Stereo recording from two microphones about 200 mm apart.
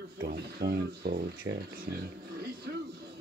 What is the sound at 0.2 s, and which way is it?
Speech, 50° right (ahead or behind).